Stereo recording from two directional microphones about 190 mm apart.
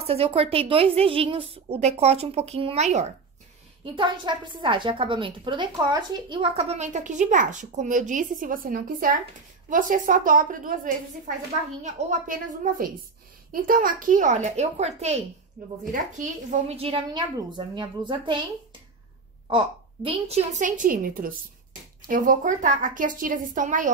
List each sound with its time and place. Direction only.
0.0 s a woman's voice: 30° right (ahead or behind)
3.8 s a woman's voice: 25° right (ahead or behind)
15.6 s a woman's voice: 45° right (ahead or behind); by 18.4 s 25° right (ahead or behind)
19.5 s a woman's voice: 30° right (ahead or behind)